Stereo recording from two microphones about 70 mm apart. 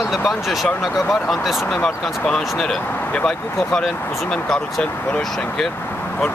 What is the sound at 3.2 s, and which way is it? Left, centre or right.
Speech, centre.